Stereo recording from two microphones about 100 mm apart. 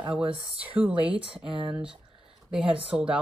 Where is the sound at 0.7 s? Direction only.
15° right (ahead or behind).